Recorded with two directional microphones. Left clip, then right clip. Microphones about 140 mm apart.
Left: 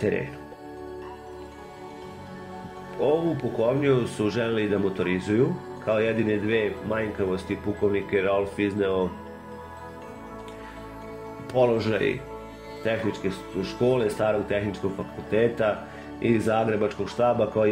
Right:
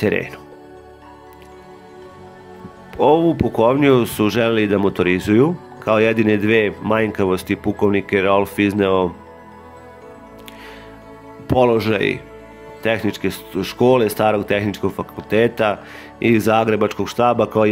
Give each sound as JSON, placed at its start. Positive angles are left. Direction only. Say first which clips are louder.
{"t": 3.0, "sound": "speech", "louder": "right 10 dB", "side_deg": -50}
{"t": 11.4, "sound": "speech", "louder": "right 7 dB", "side_deg": -40}